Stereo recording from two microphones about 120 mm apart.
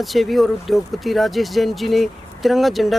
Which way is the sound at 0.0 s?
Centre (ahead or behind).